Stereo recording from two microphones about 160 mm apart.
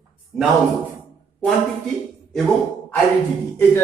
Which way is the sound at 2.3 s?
5° left (ahead or behind).